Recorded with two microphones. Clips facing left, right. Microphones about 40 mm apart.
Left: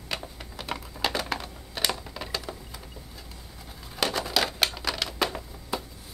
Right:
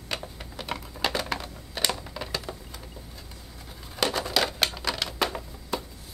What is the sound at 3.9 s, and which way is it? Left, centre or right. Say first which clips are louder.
Typewriter: right 1 dB; centre.